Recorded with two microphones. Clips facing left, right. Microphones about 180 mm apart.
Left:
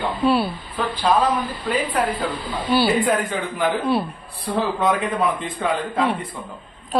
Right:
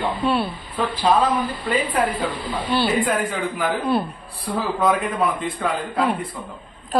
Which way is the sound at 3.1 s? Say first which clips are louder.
Left 1 dB; 5° right (ahead or behind).